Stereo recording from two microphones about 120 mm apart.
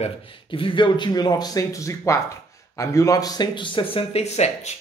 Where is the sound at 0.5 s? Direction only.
45° left (ahead or behind).